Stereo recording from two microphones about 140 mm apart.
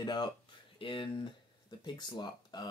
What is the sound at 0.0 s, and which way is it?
Speech, 30° left (ahead or behind).